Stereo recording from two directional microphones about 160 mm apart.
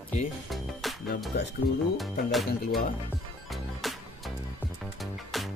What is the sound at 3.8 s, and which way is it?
Music, centre (ahead or behind).